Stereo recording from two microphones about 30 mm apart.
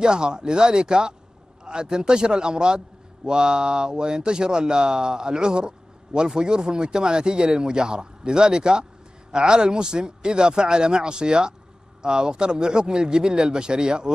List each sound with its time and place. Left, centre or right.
0.0 s speech: right